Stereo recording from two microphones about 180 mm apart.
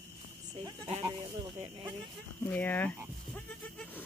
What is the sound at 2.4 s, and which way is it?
Speech, 10° left (ahead or behind).